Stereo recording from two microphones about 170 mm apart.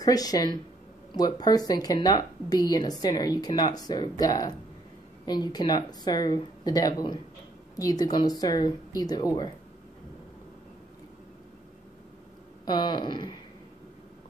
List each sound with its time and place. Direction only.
0.0 s speech: 20° left (ahead or behind)
12.6 s speech: 25° left (ahead or behind)